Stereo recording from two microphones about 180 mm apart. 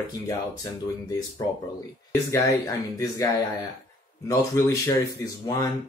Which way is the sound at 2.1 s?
20° left (ahead or behind).